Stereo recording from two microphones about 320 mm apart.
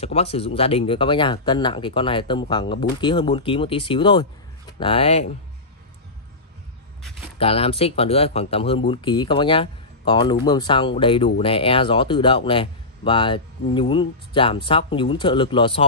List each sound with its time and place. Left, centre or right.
0.0 s speech: centre
7.3 s speech: centre